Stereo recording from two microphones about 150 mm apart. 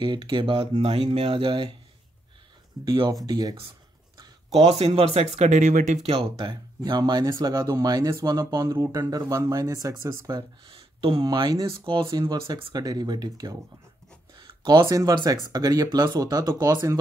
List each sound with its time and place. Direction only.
0.0 s speech: 30° right (ahead or behind)
2.8 s speech: 25° right (ahead or behind)
4.5 s speech: 40° right (ahead or behind); by 5.9 s 60° right (ahead or behind)
6.0 s speech: 40° right (ahead or behind); by 10.4 s 25° right (ahead or behind)
10.7 s speech: 35° right (ahead or behind)